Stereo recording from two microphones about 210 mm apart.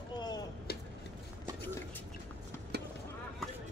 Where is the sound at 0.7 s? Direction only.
50° left (ahead or behind).